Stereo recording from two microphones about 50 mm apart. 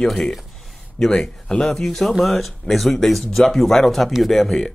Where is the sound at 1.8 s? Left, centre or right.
Centre.